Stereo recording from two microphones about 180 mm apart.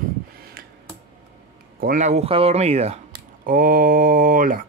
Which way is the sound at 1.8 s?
45° right (ahead or behind).